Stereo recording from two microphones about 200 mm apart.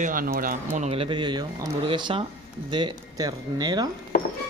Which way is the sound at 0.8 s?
30° right (ahead or behind).